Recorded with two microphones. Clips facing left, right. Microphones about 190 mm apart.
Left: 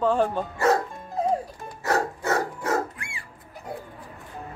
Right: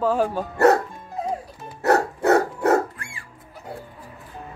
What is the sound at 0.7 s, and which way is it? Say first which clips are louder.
Music: right 2 dB; 65° right (ahead or behind).